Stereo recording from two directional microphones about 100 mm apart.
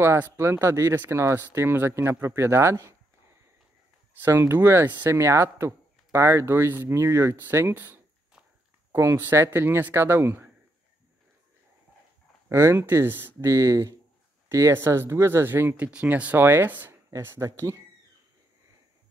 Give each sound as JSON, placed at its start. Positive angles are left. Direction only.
{"t": 0.0, "sound": "speech", "side_deg": -25}
{"t": 4.2, "sound": "speech", "side_deg": -25}
{"t": 12.4, "sound": "speech", "side_deg": -25}